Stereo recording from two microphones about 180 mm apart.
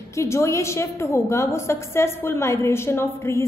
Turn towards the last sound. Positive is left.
turn(degrees=15)  # may be behind; listen again after turning